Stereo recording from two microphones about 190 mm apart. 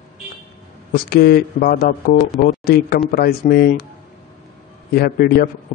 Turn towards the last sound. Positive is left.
turn(degrees=50)  # may be behind; listen again after turning